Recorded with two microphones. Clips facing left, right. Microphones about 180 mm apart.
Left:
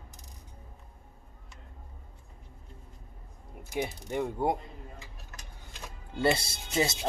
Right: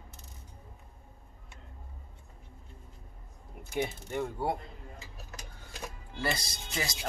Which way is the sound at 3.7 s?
15° left (ahead or behind).